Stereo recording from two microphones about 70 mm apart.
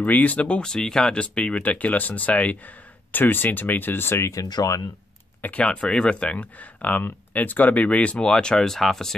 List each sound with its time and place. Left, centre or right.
0.0 s speech: left
4.5 s speech: left
5.4 s speech: centre